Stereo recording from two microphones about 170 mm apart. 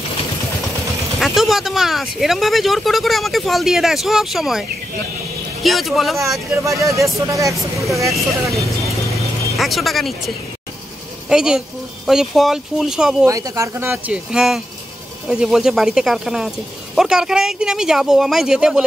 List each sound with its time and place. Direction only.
1.2 s speech: centre (ahead or behind)
6.8 s speech: 20° right (ahead or behind)
8.1 s speech: centre (ahead or behind)
13.2 s speech: 20° right (ahead or behind)